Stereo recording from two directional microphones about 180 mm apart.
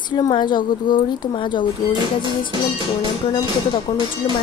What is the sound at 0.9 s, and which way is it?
Speech, 50° left (ahead or behind).